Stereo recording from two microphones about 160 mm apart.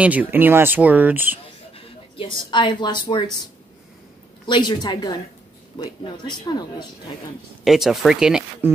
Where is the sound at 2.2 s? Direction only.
30° left (ahead or behind).